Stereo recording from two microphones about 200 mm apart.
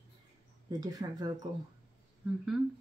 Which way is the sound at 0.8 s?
20° right (ahead or behind).